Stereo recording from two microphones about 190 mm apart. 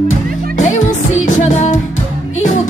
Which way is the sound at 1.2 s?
40° left (ahead or behind).